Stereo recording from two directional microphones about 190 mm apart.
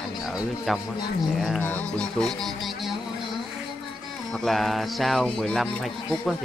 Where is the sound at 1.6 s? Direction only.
5° left (ahead or behind).